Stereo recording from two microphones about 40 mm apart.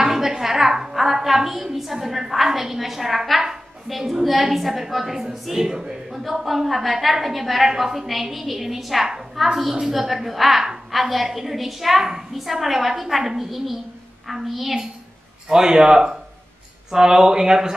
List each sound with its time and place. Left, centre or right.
0.0 s a woman's voice: centre
15.5 s speech: centre